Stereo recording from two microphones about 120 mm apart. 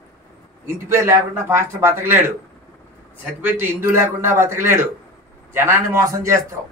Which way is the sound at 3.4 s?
20° right (ahead or behind).